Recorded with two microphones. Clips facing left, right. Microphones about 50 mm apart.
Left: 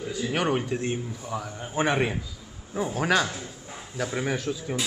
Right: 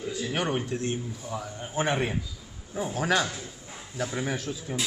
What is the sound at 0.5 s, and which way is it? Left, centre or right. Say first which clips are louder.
A man's voice: left 3 dB; centre.